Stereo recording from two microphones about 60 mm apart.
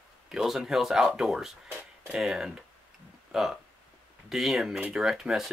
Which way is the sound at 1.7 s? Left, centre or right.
Right.